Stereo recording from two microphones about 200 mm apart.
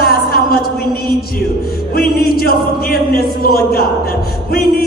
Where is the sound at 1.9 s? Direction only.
50° left (ahead or behind).